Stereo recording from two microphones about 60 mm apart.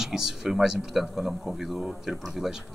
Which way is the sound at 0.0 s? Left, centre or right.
Centre.